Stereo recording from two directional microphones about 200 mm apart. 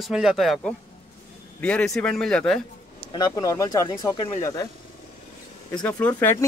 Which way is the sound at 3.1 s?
20° left (ahead or behind).